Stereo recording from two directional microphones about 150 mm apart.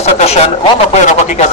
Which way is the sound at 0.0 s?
45° left (ahead or behind).